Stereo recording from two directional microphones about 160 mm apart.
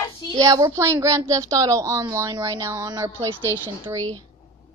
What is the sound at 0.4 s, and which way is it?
A woman's voice, 20° right (ahead or behind).